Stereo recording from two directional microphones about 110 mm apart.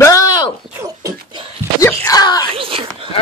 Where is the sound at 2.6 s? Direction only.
55° right (ahead or behind).